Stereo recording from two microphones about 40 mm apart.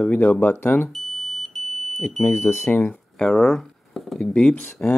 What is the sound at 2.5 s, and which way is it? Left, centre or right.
Speech, left.